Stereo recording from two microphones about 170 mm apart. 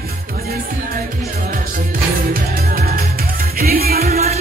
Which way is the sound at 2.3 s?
60° right (ahead or behind).